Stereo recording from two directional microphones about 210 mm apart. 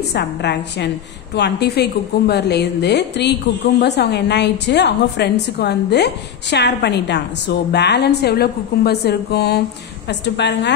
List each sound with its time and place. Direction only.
0.1 s a woman's voice: 55° left (ahead or behind)